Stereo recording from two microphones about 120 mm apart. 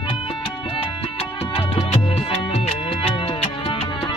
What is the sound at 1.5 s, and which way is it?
Music, 55° left (ahead or behind).